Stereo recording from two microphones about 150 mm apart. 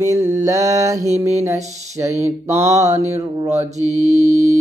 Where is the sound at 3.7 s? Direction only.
50° right (ahead or behind).